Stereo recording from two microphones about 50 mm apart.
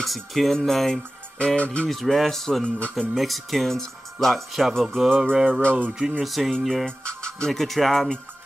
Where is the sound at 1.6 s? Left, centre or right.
Left.